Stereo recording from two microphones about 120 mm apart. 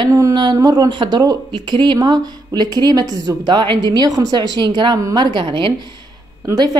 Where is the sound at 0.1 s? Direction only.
25° right (ahead or behind).